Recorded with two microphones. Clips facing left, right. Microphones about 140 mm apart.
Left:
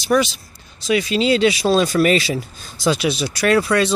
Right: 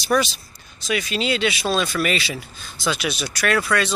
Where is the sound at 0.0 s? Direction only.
20° left (ahead or behind).